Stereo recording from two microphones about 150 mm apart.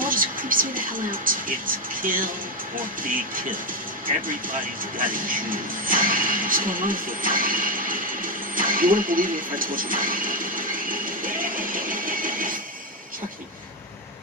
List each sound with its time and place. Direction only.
0.0 s speech: 65° right (ahead or behind)
4.9 s television: 65° right (ahead or behind)